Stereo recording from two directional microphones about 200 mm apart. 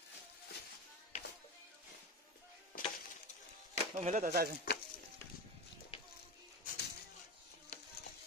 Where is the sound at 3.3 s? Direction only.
35° left (ahead or behind).